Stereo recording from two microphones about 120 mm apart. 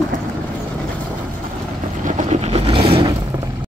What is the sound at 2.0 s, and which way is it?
Vehicle, 75° right (ahead or behind).